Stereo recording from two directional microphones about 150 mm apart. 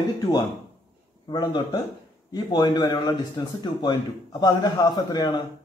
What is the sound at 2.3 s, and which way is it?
Speech, 25° left (ahead or behind).